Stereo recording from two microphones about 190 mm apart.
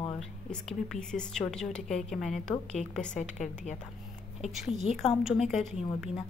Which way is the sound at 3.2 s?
40° left (ahead or behind).